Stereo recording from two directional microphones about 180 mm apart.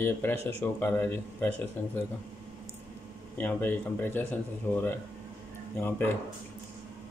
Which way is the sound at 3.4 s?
10° left (ahead or behind).